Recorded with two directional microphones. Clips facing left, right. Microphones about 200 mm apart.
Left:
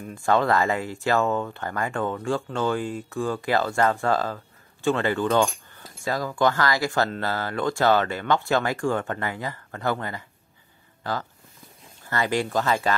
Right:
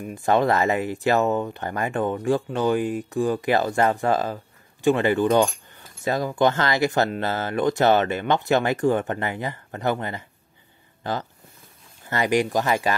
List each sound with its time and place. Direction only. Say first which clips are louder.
0.0 s speech: right 2 dB; 20° right (ahead or behind)